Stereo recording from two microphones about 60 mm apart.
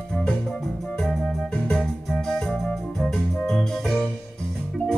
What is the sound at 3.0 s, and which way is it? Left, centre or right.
Music, centre.